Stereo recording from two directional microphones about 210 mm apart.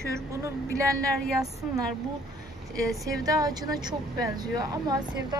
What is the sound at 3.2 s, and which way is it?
Speech, 15° right (ahead or behind).